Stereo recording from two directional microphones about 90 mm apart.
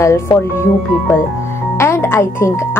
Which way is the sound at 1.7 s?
30° left (ahead or behind).